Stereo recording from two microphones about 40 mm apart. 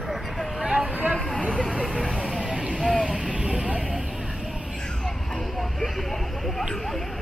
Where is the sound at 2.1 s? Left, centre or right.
Right.